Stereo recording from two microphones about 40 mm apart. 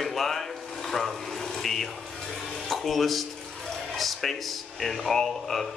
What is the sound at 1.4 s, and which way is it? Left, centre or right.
Water, centre.